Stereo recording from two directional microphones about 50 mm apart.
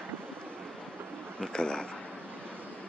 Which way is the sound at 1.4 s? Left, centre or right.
Centre.